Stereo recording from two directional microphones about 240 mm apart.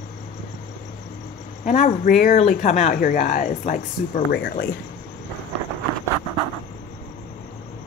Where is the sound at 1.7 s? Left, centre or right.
Left.